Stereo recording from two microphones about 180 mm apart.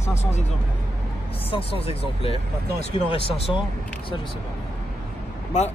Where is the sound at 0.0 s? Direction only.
40° left (ahead or behind).